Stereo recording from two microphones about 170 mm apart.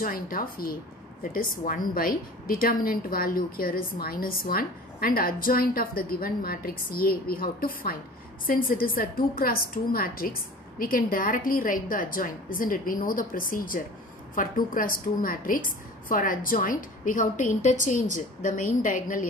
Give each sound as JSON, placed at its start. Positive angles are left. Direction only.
{"t": 0.0, "sound": "a woman's voice", "side_deg": 55}